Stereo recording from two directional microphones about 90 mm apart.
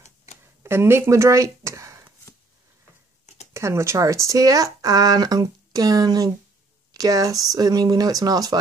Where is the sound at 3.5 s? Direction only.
35° right (ahead or behind).